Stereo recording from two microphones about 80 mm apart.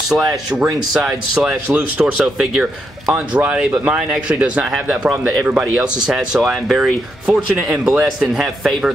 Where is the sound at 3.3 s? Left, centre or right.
Centre.